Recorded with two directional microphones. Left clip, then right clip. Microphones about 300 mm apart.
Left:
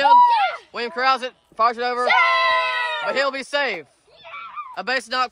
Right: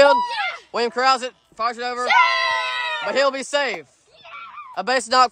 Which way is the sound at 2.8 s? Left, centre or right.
Left.